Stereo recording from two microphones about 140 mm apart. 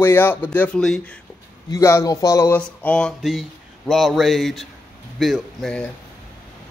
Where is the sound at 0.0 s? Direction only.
15° left (ahead or behind).